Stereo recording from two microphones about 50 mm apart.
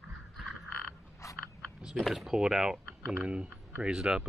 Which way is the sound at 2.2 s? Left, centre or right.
Centre.